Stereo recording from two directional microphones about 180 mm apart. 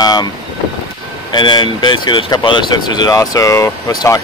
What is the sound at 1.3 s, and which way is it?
Speech, 25° left (ahead or behind).